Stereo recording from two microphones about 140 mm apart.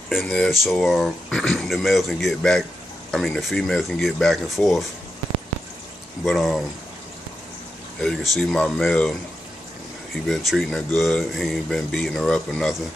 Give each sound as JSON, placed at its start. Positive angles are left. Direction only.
{"t": 0.1, "sound": "speech", "side_deg": 0}
{"t": 6.2, "sound": "speech", "side_deg": 0}
{"t": 8.0, "sound": "speech", "side_deg": 0}
{"t": 10.2, "sound": "speech", "side_deg": 0}